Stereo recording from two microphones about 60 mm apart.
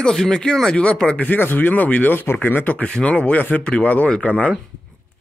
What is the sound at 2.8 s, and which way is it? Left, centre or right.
Speech, centre.